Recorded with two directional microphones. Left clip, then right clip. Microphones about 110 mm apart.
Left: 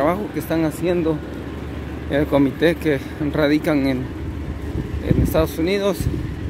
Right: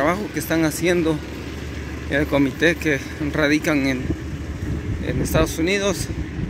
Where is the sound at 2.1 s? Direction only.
15° left (ahead or behind).